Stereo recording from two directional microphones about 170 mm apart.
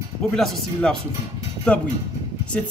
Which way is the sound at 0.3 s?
Centre (ahead or behind).